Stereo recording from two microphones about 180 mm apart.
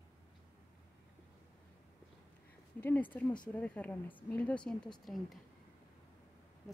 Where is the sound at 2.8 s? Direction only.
10° left (ahead or behind).